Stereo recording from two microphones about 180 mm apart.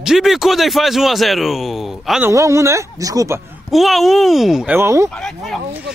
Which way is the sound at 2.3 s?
15° right (ahead or behind).